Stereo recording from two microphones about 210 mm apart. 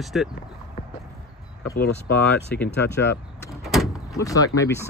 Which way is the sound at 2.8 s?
55° left (ahead or behind).